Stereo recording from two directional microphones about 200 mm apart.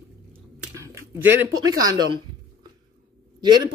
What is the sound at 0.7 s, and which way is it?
Speech, 15° right (ahead or behind).